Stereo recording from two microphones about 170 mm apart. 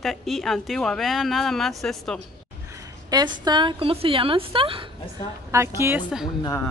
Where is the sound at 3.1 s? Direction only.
25° right (ahead or behind).